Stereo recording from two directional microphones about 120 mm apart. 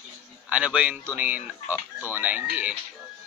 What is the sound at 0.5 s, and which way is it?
A man's voice, 10° right (ahead or behind).